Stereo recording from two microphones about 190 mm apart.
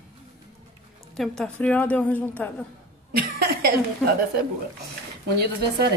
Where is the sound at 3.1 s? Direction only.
55° right (ahead or behind).